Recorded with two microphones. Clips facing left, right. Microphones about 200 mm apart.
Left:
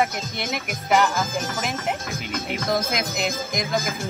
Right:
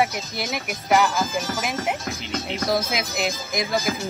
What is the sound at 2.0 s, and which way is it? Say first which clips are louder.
Speech: even; 50° left (ahead or behind).